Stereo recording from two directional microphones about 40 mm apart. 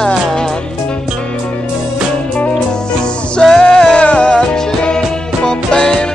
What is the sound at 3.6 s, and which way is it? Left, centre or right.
Music, centre.